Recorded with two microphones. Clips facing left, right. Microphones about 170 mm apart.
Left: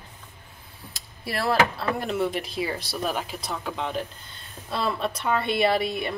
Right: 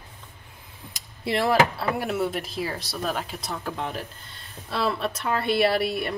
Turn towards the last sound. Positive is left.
turn(degrees=0)  # may be behind; listen again after turning